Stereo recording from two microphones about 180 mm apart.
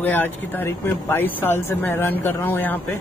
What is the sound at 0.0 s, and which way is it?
Speech, 10° left (ahead or behind).